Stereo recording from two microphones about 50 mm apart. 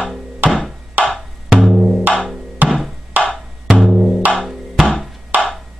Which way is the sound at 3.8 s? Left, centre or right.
Centre.